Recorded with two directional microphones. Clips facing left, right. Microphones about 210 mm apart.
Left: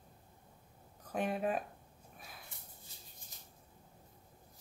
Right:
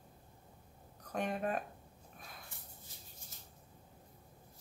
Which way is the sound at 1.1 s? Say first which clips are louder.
Left 2 dB; 5° left (ahead or behind).